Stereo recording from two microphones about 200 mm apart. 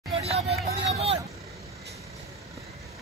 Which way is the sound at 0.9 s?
30° right (ahead or behind).